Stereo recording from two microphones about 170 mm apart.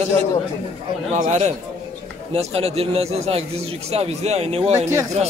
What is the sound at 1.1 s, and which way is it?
A man's voice, 45° right (ahead or behind).